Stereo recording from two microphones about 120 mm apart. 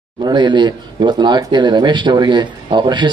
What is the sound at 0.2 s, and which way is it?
Speech, 40° right (ahead or behind).